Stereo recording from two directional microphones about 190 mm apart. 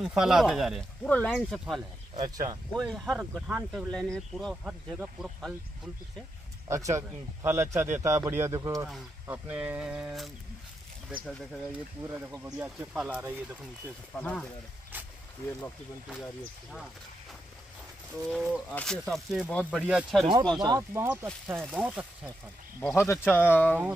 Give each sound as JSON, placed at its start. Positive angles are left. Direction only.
{"t": 0.0, "sound": "speech", "side_deg": 0}
{"t": 2.1, "sound": "speech", "side_deg": -20}
{"t": 2.7, "sound": "speech", "side_deg": 0}
{"t": 6.7, "sound": "speech", "side_deg": -15}
{"t": 8.8, "sound": "speech", "side_deg": -5}
{"t": 12.5, "sound": "speech", "side_deg": -5}
{"t": 14.2, "sound": "speech", "side_deg": 5}
{"t": 18.3, "sound": "speech", "side_deg": 5}
{"t": 20.6, "sound": "speech", "side_deg": -15}
{"t": 21.6, "sound": "speech", "side_deg": -5}
{"t": 22.8, "sound": "speech", "side_deg": 10}